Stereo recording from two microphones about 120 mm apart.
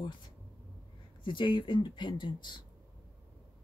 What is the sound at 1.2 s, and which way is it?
Speech, 40° left (ahead or behind).